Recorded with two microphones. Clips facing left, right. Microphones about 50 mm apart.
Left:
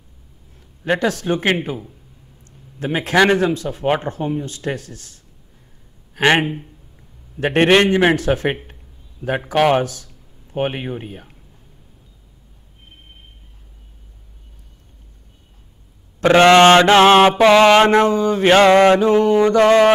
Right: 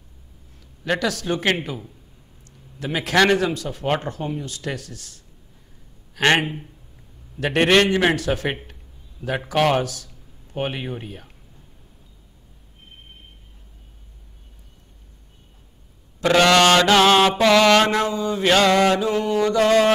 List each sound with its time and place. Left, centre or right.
0.8 s mantra: left
2.4 s a sound: left
3.3 s speech: left
6.2 s a man's voice: centre
7.3 s speech: left
7.8 s mantra: left
8.2 s speech: left
9.2 s a man's voice: centre
9.8 s speech: left
16.3 s mantra: left
19.6 s speech: left